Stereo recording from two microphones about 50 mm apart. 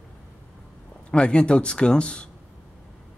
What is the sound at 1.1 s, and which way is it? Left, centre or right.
A man's voice, centre.